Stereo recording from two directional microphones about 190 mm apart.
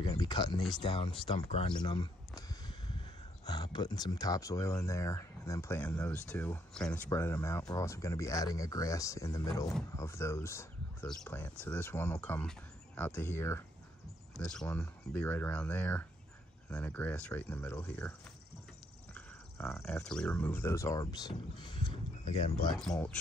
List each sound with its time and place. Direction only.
0.0 s speech: 20° left (ahead or behind)
19.1 s speech: 10° left (ahead or behind); by 22.5 s 35° left (ahead or behind)
22.8 s speech: 5° left (ahead or behind)